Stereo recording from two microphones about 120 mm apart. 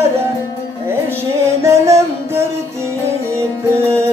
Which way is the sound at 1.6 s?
25° right (ahead or behind).